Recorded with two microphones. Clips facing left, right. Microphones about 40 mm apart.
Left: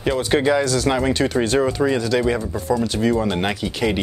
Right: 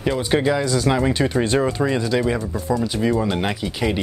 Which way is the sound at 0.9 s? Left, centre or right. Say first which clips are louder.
Even; centre.